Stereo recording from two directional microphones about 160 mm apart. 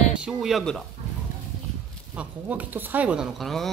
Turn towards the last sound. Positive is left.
turn(degrees=0)  # may be behind; listen again after turning